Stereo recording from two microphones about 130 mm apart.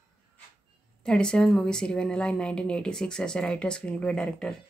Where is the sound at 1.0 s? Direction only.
5° left (ahead or behind).